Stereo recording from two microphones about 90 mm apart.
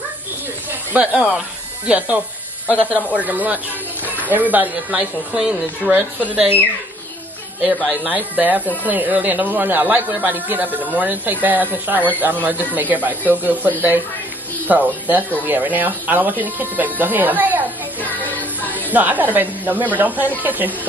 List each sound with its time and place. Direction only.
0.9 s speech: 15° right (ahead or behind)
7.6 s speech: 10° right (ahead or behind)
18.0 s music: 20° left (ahead or behind)
18.9 s speech: 20° right (ahead or behind)